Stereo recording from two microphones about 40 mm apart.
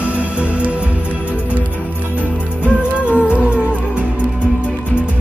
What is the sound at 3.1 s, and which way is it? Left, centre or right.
Music, right.